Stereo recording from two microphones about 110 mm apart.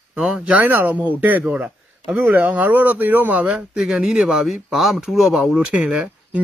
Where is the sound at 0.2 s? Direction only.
10° right (ahead or behind).